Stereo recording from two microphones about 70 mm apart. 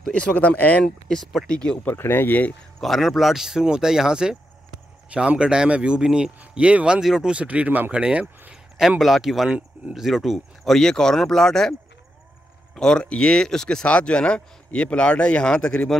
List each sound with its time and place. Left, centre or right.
0.1 s speech: centre
1.0 s speech: centre
1.9 s speech: left
2.8 s speech: centre
8.7 s speech: centre
12.7 s speech: centre